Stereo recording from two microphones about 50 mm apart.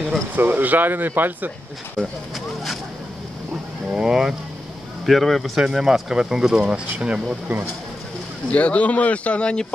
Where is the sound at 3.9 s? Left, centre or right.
Centre.